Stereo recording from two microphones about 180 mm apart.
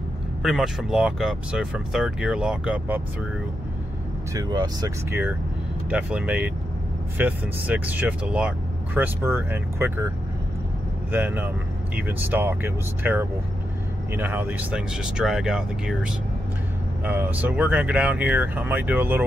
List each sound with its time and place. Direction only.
0.4 s speech: centre (ahead or behind)
4.3 s speech: 20° right (ahead or behind)
5.9 s speech: 5° right (ahead or behind)
11.1 s speech: 10° right (ahead or behind)